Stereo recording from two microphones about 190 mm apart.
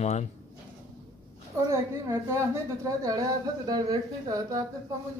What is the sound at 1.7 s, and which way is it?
A woman's voice, 15° right (ahead or behind).